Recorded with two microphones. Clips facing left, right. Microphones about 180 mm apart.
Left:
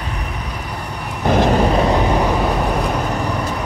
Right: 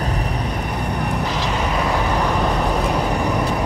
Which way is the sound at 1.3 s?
50° left (ahead or behind).